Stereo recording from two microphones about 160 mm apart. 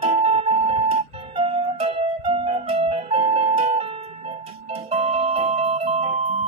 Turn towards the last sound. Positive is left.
turn(degrees=-45)  # may be behind; listen again after turning